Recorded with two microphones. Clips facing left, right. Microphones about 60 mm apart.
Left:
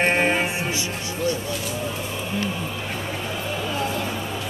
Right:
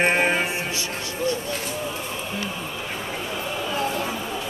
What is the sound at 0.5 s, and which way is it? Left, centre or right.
Music, left.